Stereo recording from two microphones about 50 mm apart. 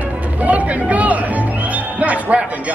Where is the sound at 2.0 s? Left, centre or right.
Right.